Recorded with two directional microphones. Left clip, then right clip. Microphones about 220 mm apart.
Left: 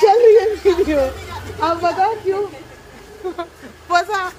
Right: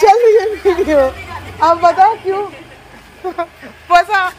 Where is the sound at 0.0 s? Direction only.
30° right (ahead or behind).